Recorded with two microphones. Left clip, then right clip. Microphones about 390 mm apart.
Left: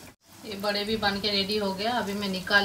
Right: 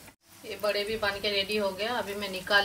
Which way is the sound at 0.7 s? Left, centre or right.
Centre.